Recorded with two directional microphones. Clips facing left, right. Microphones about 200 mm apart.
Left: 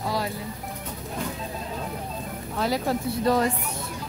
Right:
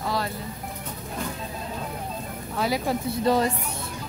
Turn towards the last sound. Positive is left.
turn(degrees=-25)  # may be behind; listen again after turning